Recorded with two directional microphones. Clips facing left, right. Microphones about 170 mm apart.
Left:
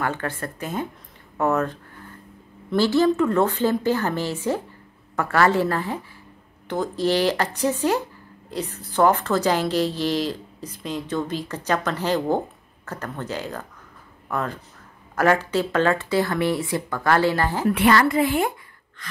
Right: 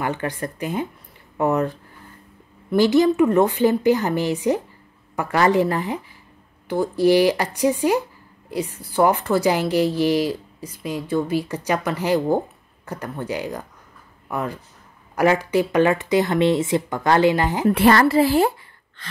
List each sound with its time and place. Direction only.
0.0 s a woman's voice: 15° right (ahead or behind)
17.7 s a woman's voice: 35° right (ahead or behind)
19.0 s a sound: 30° right (ahead or behind)